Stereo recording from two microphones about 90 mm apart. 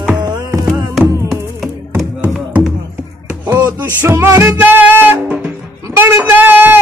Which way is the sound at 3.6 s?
30° right (ahead or behind).